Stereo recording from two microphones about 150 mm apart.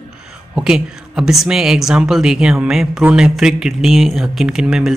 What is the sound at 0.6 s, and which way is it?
Speech, 5° right (ahead or behind).